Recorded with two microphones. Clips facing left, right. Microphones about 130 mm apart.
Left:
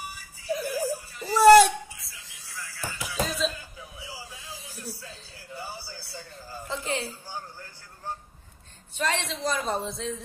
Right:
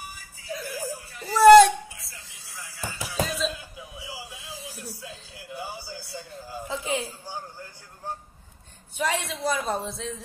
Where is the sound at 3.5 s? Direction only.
15° right (ahead or behind).